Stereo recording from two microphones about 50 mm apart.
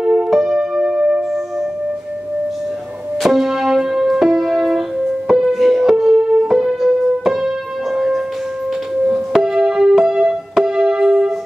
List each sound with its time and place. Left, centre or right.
0.0 s music: centre
3.2 s music: centre